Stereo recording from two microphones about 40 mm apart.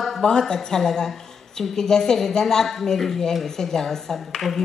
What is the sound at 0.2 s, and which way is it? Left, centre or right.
A woman's voice, centre.